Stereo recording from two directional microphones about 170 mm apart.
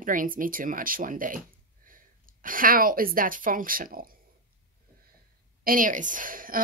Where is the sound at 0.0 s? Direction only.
55° right (ahead or behind).